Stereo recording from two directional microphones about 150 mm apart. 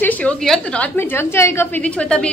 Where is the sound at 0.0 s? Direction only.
10° left (ahead or behind).